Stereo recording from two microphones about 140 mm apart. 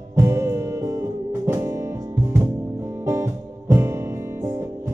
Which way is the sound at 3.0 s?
20° right (ahead or behind).